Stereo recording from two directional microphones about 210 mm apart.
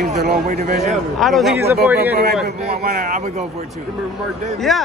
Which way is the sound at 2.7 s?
45° right (ahead or behind).